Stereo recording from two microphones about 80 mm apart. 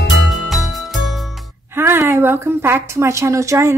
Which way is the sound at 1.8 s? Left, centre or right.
Right.